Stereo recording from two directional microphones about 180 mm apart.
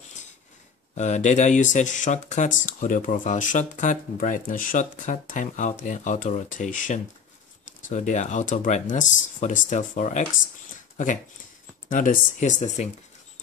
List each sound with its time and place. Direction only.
0.9 s speech: 40° left (ahead or behind)
11.9 s speech: 45° left (ahead or behind)